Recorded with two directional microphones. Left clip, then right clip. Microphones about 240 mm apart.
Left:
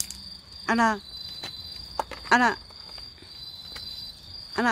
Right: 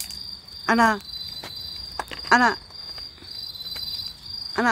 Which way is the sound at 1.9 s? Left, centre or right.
Centre.